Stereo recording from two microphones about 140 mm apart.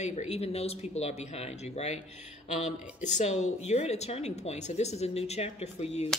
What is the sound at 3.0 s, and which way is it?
Speech, 55° left (ahead or behind).